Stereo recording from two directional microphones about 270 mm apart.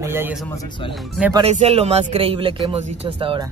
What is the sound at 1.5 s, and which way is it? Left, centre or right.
A man's voice, right.